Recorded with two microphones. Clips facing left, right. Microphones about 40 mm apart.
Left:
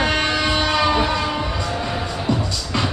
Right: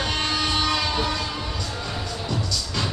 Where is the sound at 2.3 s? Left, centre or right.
Left.